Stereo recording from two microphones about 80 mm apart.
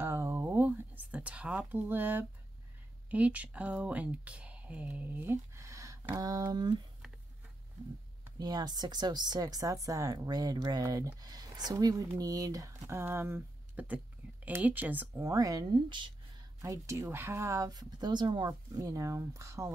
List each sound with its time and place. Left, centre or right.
0.0 s a sound: right
0.7 s speech: centre
5.2 s a sound: right
6.1 s speech: right
8.4 s speech: right
13.7 s speech: right
15.1 s speech: right
16.6 s speech: right
17.7 s speech: right
18.5 s speech: right